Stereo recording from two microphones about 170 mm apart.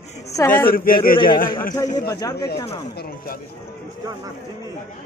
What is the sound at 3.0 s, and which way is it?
Speech, 60° left (ahead or behind).